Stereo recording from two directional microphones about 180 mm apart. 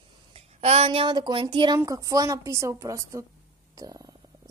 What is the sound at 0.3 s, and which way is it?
A woman's voice, 35° right (ahead or behind).